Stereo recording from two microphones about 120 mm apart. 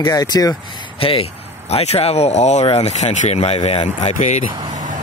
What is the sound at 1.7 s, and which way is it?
Speech, 55° left (ahead or behind).